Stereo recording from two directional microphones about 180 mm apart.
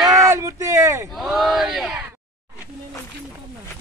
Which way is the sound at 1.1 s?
Centre (ahead or behind).